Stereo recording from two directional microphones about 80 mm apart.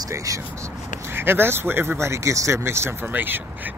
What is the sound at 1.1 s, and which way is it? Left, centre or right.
Speech, right.